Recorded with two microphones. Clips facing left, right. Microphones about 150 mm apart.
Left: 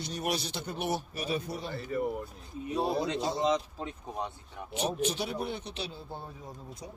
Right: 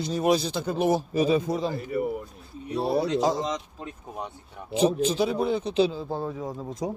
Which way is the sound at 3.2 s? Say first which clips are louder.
Right 7 dB; 90° right.